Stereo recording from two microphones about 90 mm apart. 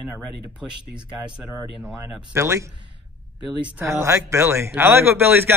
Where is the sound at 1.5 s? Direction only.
30° right (ahead or behind).